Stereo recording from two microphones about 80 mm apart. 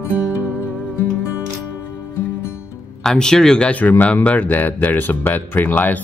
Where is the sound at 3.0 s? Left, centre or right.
Centre.